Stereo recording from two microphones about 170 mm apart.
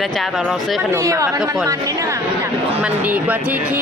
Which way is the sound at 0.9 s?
20° right (ahead or behind).